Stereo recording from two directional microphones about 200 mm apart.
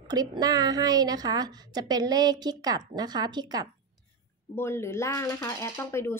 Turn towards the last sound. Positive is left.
turn(degrees=10)  # may be behind; listen again after turning